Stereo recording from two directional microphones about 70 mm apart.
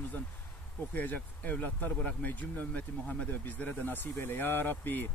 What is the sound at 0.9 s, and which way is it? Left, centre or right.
Speech, left.